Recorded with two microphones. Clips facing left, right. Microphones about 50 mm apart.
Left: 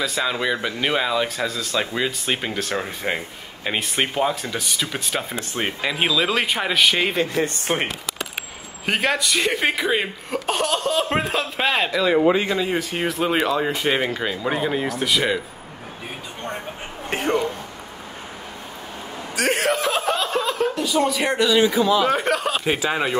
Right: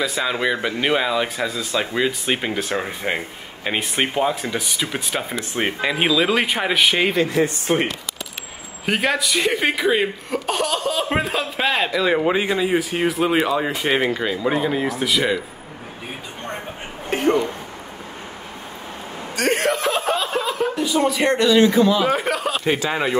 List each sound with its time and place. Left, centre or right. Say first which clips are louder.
0.0 s speech: right 2 dB; centre
7.4 s speech: right 2 dB; left
8.8 s speech: right 1 dB; centre
12.3 s speech: right 1 dB; centre
19.3 s speech: right 1 dB; centre